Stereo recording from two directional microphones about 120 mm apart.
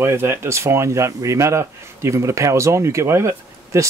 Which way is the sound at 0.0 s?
20° right (ahead or behind).